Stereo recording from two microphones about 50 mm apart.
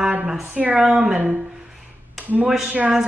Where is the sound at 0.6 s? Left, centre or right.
Right.